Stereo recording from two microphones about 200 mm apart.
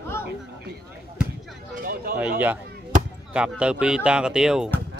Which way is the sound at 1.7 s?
45° right (ahead or behind).